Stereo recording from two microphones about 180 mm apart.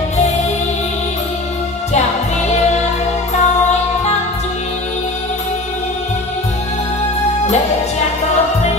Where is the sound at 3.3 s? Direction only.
40° left (ahead or behind).